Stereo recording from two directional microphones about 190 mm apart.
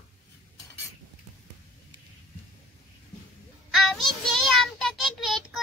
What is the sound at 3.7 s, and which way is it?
Child singing, centre (ahead or behind).